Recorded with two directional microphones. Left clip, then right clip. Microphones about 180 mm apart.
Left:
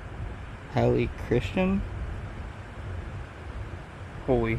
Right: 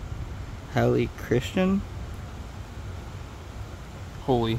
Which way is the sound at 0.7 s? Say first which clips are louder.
Right 1 dB; 25° right (ahead or behind).